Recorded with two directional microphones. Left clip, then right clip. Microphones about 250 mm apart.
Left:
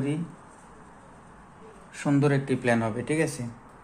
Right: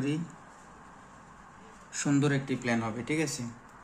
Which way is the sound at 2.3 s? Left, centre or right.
Left.